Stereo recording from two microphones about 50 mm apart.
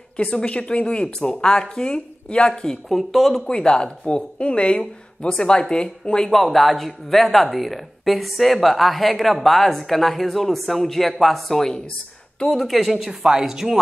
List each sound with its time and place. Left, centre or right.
0.2 s speech: left
2.9 s speech: centre
3.4 s speech: centre
6.3 s speech: centre